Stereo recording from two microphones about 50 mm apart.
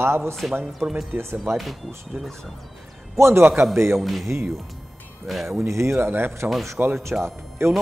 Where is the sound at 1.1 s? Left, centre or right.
Right.